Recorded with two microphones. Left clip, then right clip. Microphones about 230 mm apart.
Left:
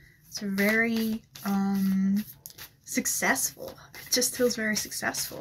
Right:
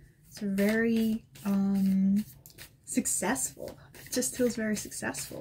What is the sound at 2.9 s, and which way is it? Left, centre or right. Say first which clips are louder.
Speech: left 5 dB; centre.